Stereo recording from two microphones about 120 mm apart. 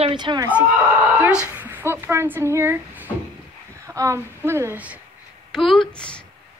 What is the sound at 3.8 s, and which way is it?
Speech, 25° right (ahead or behind).